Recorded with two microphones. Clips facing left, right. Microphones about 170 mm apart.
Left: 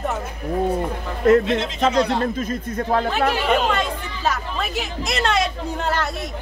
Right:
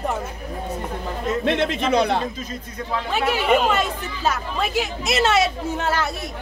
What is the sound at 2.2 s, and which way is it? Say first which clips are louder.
Speech: left 6 dB; 50° left (ahead or behind).